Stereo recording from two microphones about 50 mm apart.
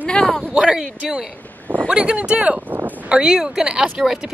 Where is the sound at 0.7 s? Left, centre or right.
Centre.